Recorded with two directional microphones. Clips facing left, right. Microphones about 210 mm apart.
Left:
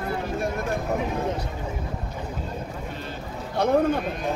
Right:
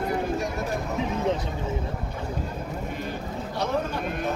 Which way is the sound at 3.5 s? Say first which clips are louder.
Left 7 dB; 55° left (ahead or behind).